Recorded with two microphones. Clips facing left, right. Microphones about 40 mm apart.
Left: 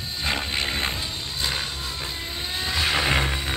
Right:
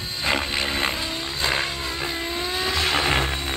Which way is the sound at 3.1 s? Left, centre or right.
Centre.